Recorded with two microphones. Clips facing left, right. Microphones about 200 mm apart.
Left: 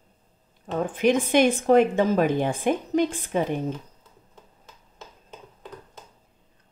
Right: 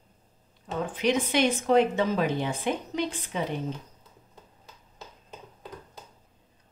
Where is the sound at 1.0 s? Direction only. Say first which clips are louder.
Left 5 dB; 50° left (ahead or behind).